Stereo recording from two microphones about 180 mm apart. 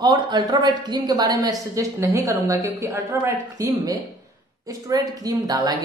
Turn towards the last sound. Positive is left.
turn(degrees=-20)  # may be behind; listen again after turning